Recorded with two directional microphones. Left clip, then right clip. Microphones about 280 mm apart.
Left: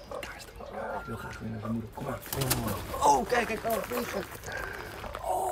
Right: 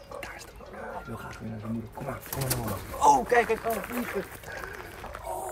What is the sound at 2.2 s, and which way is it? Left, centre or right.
Speech, centre.